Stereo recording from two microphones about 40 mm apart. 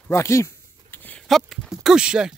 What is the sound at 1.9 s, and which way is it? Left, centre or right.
Speech, centre.